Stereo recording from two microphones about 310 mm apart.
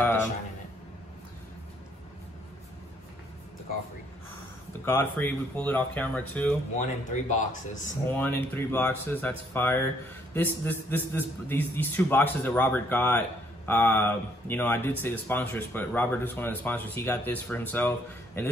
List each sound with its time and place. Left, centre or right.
4.8 s speech: centre
6.7 s speech: left
8.1 s speech: centre